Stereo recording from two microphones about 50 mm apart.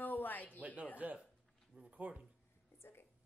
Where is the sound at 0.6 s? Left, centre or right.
Right.